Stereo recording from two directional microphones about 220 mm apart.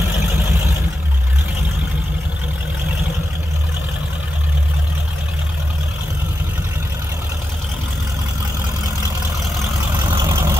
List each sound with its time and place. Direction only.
10.1 s vehicle: 15° right (ahead or behind)